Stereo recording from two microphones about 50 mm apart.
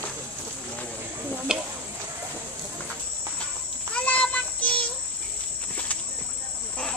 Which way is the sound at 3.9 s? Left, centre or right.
Left.